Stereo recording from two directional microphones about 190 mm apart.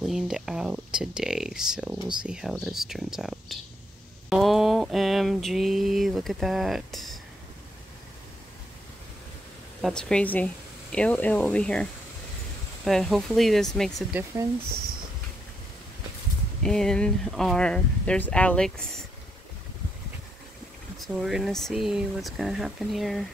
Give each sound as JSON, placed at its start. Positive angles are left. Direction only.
{"t": 0.0, "sound": "speech", "side_deg": 0}
{"t": 4.3, "sound": "a sound", "side_deg": 0}
{"t": 9.8, "sound": "speech", "side_deg": 0}
{"t": 16.6, "sound": "speech", "side_deg": 5}
{"t": 21.0, "sound": "speech", "side_deg": 0}